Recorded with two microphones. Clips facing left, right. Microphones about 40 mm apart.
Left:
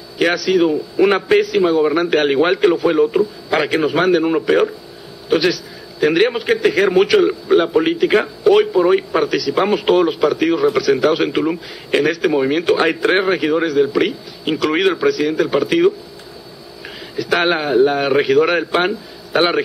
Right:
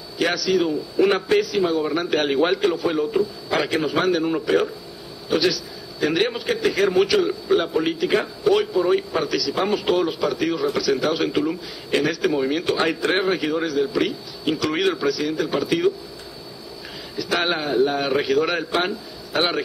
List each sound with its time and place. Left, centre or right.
0.2 s a man's voice: left
17.2 s a man's voice: left